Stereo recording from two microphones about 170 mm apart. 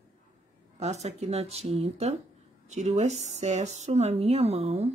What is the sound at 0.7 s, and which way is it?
Speech, 40° right (ahead or behind).